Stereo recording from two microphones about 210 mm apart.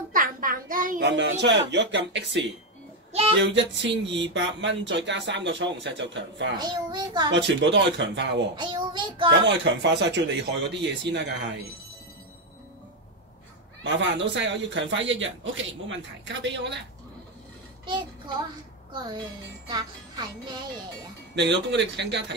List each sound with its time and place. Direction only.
0.1 s a sound: 40° right (ahead or behind)
1.0 s speech: 55° right (ahead or behind)
3.1 s a sound: 30° right (ahead or behind)
3.3 s speech: 55° right (ahead or behind)
6.6 s a child's voice: 20° right (ahead or behind)
7.3 s speech: 60° right (ahead or behind)
8.5 s a child's voice: 20° right (ahead or behind)
9.8 s speech: 55° right (ahead or behind)
13.8 s speech: 60° right (ahead or behind)
17.8 s a child's voice: 20° right (ahead or behind)
21.6 s speech: 55° right (ahead or behind)